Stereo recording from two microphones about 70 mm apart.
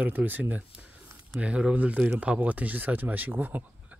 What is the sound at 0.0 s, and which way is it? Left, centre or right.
Speech, right.